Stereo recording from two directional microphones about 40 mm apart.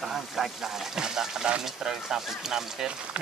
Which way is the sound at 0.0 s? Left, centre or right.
Centre.